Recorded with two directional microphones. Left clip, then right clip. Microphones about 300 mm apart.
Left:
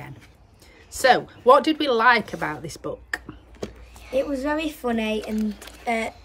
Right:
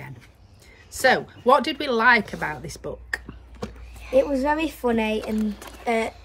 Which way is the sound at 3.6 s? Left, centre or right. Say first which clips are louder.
Left 1 dB; centre.